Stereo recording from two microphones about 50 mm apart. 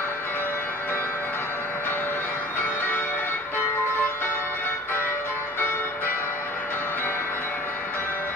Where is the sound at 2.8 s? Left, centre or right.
Left.